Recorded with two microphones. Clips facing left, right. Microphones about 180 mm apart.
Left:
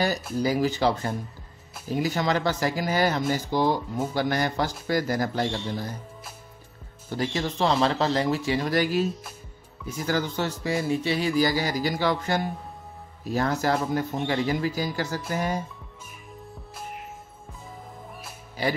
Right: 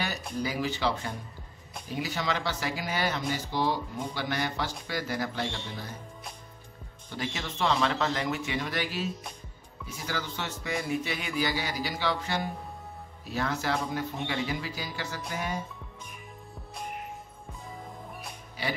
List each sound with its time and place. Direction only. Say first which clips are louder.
0.4 s a man's voice: left 7 dB; 40° left (ahead or behind)
7.1 s a man's voice: left 8 dB; 40° left (ahead or behind)
18.6 s speech: left 7 dB; 40° left (ahead or behind)